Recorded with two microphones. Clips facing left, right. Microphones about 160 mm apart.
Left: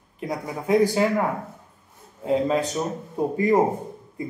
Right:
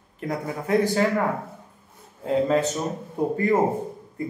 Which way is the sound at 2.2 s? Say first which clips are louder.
Right 1 dB; 15° left (ahead or behind).